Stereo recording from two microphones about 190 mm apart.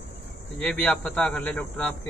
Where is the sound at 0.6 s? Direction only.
5° left (ahead or behind).